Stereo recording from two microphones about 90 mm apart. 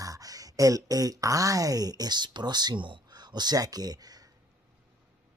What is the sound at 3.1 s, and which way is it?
Speech, 50° right (ahead or behind).